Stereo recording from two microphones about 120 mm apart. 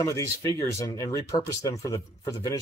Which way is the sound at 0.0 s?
25° left (ahead or behind).